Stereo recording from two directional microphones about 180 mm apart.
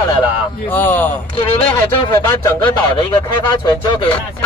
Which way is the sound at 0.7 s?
10° left (ahead or behind).